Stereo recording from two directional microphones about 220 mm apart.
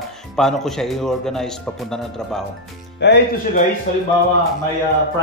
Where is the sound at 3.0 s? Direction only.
50° left (ahead or behind).